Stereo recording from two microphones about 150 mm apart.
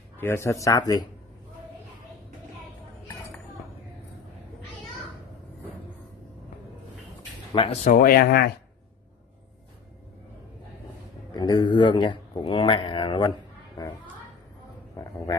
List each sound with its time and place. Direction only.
0.2 s speech: 15° left (ahead or behind)
7.5 s speech: 35° left (ahead or behind)
7.8 s speech: 65° left (ahead or behind); by 8.5 s 85° left
11.3 s speech: 30° left (ahead or behind)